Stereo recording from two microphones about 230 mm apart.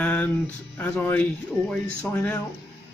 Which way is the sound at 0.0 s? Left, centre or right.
Centre.